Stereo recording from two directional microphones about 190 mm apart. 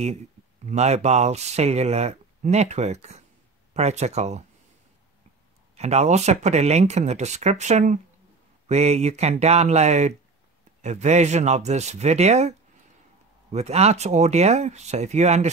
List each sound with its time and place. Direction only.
0.7 s speech: 35° right (ahead or behind)
5.8 s speech: 35° right (ahead or behind)